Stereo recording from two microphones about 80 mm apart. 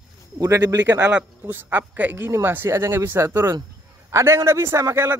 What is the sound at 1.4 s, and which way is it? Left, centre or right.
A man's voice, right.